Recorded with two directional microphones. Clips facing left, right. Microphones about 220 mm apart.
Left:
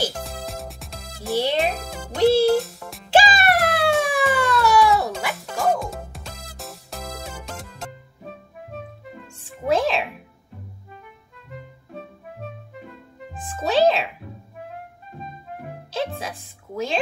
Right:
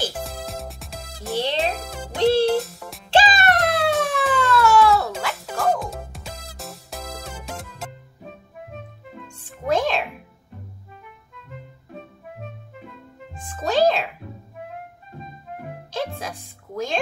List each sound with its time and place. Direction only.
0.1 s music: centre (ahead or behind)
1.3 s music: 10° left (ahead or behind)
4.3 s a sound: 15° left (ahead or behind)
5.3 s music: centre (ahead or behind)
9.1 s music: 5° left (ahead or behind)
13.6 s music: 5° left (ahead or behind)
15.9 s music: centre (ahead or behind)